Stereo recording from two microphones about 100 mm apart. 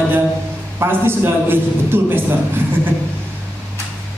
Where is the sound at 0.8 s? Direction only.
25° right (ahead or behind).